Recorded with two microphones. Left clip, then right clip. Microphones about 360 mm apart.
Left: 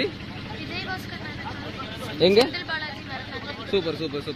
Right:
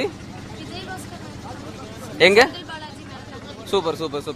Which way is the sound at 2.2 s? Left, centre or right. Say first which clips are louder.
Right 5 dB; right.